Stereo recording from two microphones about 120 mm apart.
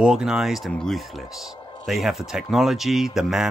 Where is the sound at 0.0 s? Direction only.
5° right (ahead or behind).